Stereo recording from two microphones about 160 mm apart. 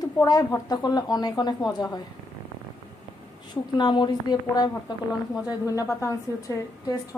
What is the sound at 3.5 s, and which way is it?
A woman's voice, 30° left (ahead or behind).